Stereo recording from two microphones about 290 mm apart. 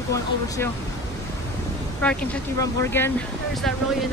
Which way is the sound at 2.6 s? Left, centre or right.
Centre.